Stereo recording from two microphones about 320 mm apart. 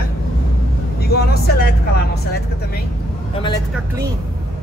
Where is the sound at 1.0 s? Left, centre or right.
Left.